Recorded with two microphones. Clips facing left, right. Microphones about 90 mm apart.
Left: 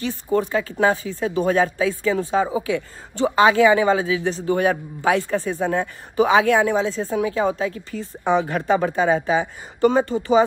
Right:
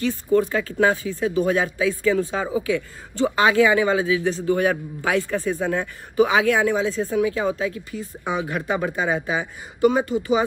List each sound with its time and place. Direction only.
0.0 s speech: 25° left (ahead or behind)